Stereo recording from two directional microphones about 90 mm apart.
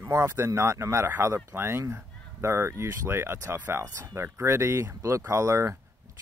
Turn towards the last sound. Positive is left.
turn(degrees=-35)  # may be behind; listen again after turning